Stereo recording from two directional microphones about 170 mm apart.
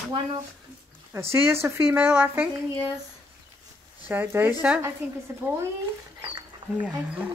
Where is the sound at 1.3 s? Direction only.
15° right (ahead or behind).